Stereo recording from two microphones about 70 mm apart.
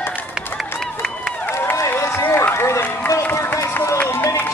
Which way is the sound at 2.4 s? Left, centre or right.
Left.